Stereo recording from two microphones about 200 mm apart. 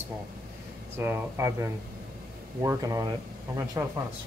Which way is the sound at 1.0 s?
10° right (ahead or behind).